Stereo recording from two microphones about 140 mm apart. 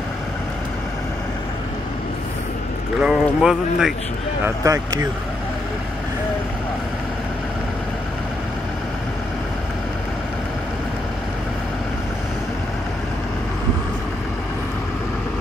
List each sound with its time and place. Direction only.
3.0 s speech: 5° right (ahead or behind)
4.6 s speech: 20° right (ahead or behind)